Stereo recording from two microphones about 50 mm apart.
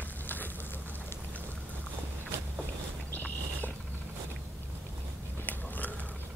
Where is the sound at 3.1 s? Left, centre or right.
Left.